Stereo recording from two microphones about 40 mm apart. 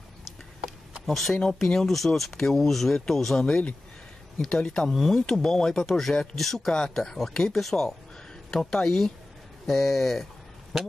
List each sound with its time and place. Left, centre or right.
1.0 s speech: centre
3.3 s speech: centre
4.8 s speech: centre
6.7 s speech: centre
7.0 s speech: centre